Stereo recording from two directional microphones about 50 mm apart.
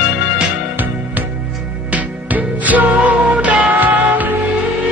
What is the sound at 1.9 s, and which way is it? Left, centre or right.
Music, right.